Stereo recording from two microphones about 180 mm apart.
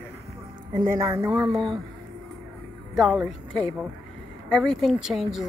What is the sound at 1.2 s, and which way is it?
Speech, 5° right (ahead or behind).